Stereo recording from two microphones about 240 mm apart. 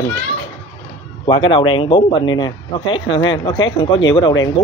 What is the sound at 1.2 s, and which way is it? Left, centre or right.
Speech, left.